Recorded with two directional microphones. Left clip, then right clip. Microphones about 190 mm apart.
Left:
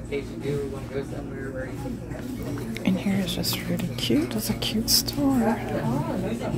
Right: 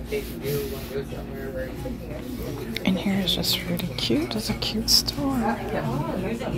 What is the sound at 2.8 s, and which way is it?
A woman's voice, 5° left (ahead or behind).